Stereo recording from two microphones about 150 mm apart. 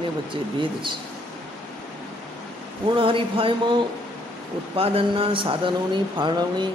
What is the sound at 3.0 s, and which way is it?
A man's voice, 35° right (ahead or behind).